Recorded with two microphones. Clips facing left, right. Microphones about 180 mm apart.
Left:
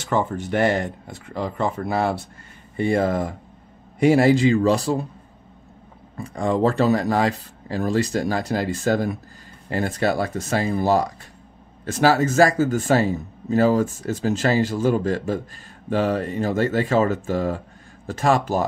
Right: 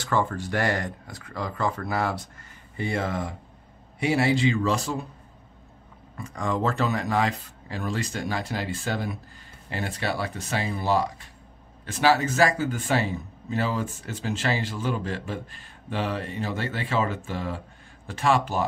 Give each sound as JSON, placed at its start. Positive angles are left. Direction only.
{"t": 0.0, "sound": "speech", "side_deg": 20}
{"t": 6.1, "sound": "speech", "side_deg": 30}